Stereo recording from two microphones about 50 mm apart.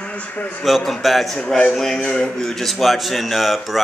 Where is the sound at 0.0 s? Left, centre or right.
Left.